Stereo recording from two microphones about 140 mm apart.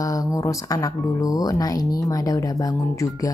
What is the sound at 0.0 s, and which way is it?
Speech, 25° left (ahead or behind).